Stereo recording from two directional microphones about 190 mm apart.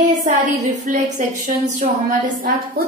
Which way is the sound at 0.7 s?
40° right (ahead or behind).